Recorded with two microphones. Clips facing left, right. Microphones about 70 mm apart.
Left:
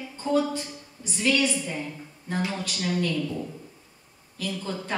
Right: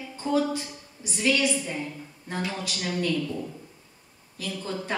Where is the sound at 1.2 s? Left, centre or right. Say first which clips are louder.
Even; centre.